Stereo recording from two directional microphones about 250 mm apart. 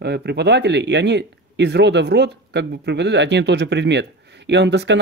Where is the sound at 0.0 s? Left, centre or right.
Right.